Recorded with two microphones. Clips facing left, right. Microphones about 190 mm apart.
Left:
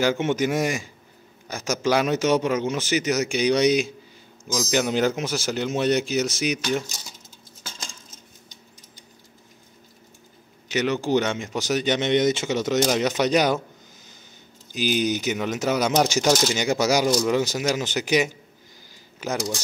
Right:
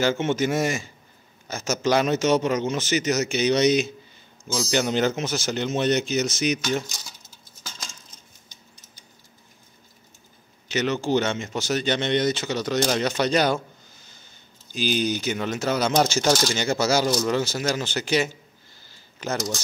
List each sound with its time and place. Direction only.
0.0 s speech: 10° left (ahead or behind)
10.7 s speech: 15° left (ahead or behind)
14.7 s speech: 15° left (ahead or behind)